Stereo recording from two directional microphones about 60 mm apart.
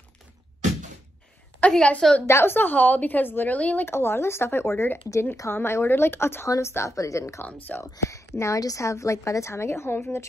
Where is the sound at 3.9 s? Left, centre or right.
Left.